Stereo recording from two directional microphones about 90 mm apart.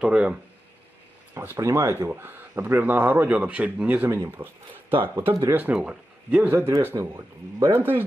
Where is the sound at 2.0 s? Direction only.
20° right (ahead or behind).